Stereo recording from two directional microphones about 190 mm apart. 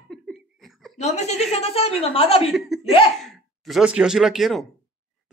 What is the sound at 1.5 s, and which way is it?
Speech, 35° left (ahead or behind).